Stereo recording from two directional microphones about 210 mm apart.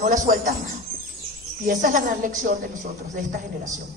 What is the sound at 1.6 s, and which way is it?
Speech, 40° right (ahead or behind).